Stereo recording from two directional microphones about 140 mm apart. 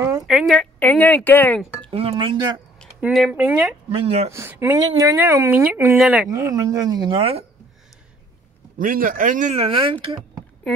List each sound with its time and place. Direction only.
0.3 s a woman's voice: centre (ahead or behind)
0.7 s speech: 10° left (ahead or behind)
1.9 s speech: 40° right (ahead or behind)
3.0 s speech: 5° right (ahead or behind)
3.9 s speech: 45° right (ahead or behind)
4.3 s speech: 20° right (ahead or behind)
6.3 s speech: 20° right (ahead or behind); by 7.4 s 40° right (ahead or behind)
8.7 s a man's voice: 75° right (ahead or behind)
9.5 s speech: 45° right (ahead or behind)
10.0 s speech: 25° right (ahead or behind)